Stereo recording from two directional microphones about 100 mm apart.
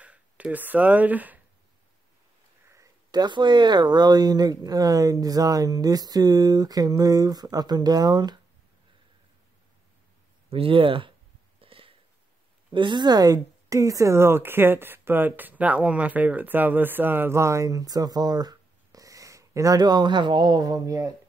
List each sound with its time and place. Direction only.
0.0 s speech: 15° right (ahead or behind)
3.1 s speech: 45° right (ahead or behind)
10.5 s speech: 65° right (ahead or behind)
11.6 s a sound: 65° right (ahead or behind)
12.7 s speech: 50° right (ahead or behind); by 21.1 s 35° right (ahead or behind)